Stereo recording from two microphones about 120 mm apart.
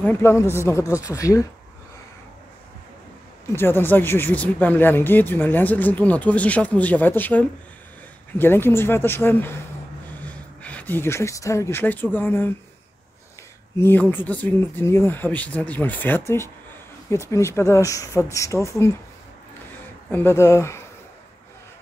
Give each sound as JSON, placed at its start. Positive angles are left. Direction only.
{"t": 0.0, "sound": "speech", "side_deg": 20}
{"t": 3.5, "sound": "speech", "side_deg": 20}
{"t": 13.7, "sound": "speech", "side_deg": 15}
{"t": 20.1, "sound": "speech", "side_deg": 20}